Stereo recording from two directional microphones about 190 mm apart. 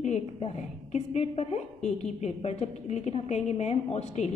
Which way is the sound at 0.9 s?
35° left (ahead or behind).